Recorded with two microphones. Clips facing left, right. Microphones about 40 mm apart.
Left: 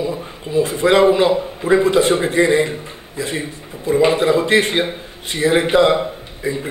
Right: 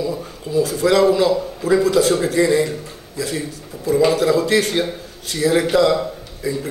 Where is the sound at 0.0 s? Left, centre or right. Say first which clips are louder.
Left 1 dB; left.